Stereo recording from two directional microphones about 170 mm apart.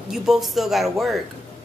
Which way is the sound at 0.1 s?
Centre (ahead or behind).